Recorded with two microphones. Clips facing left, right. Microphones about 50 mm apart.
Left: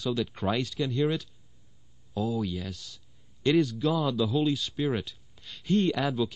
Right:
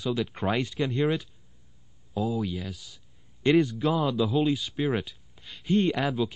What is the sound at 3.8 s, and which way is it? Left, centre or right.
Speech, centre.